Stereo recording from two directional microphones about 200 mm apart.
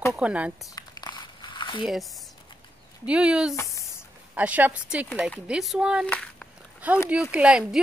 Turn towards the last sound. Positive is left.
turn(degrees=-5)  # may be behind; listen again after turning